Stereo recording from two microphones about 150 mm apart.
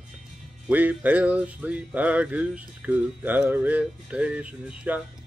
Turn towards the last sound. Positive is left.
turn(degrees=-10)  # may be behind; listen again after turning